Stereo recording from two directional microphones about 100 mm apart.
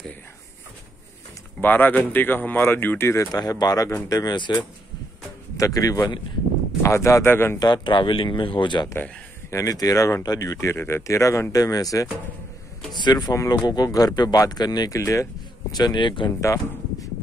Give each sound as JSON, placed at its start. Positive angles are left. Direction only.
{"t": 1.6, "sound": "speech", "side_deg": 20}
{"t": 3.3, "sound": "speech", "side_deg": 40}
{"t": 4.4, "sound": "speech", "side_deg": 50}
{"t": 5.6, "sound": "speech", "side_deg": 35}
{"t": 7.5, "sound": "speech", "side_deg": 45}
{"t": 9.5, "sound": "speech", "side_deg": 35}
{"t": 15.0, "sound": "speech", "side_deg": 30}
{"t": 15.7, "sound": "speech", "side_deg": 45}
{"t": 16.3, "sound": "speech", "side_deg": 30}